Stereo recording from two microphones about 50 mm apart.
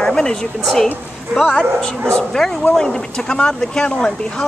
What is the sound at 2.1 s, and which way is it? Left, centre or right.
Speech, centre.